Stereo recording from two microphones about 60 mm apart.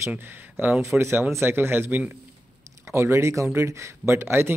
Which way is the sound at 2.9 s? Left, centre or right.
Right.